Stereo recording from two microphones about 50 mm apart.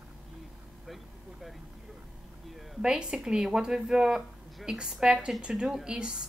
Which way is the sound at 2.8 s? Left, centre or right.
Centre.